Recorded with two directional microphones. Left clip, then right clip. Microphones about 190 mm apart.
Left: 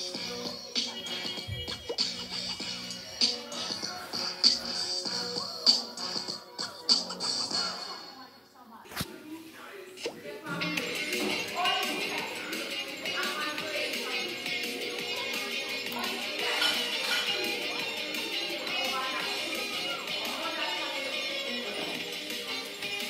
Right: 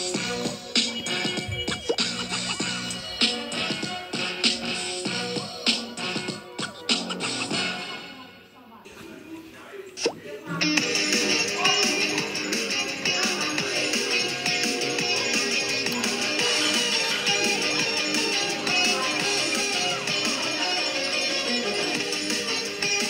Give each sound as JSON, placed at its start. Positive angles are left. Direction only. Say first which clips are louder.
{"t": 0.0, "sound": "music", "louder": "right 8 dB", "side_deg": -35}
{"t": 4.5, "sound": "music", "louder": "left 1 dB", "side_deg": 5}
{"t": 10.0, "sound": "music", "louder": "right 8 dB", "side_deg": -30}